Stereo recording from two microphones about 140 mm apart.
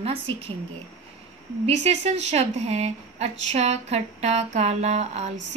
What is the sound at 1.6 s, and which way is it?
A woman's voice, 50° right (ahead or behind).